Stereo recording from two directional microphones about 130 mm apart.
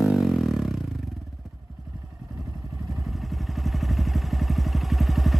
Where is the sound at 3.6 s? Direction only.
Centre (ahead or behind).